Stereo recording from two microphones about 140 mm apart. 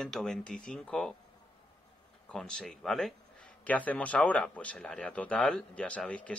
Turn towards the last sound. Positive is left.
turn(degrees=10)  # may be behind; listen again after turning